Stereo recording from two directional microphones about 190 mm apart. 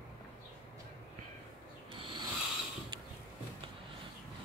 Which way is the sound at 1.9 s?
25° right (ahead or behind).